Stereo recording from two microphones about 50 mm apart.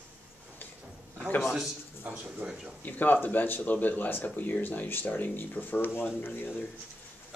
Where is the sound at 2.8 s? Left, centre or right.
Left.